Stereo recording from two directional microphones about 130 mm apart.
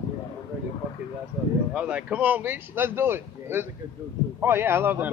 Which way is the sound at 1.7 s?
10° right (ahead or behind).